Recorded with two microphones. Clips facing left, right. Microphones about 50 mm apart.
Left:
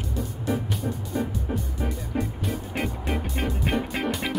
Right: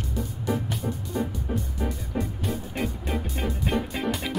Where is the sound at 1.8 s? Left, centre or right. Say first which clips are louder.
Left 1 dB; centre.